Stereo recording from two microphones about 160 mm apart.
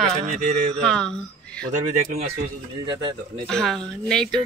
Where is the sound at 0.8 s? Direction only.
5° left (ahead or behind).